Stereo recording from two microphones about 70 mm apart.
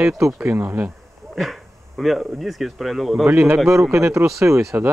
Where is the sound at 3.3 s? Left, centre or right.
Right.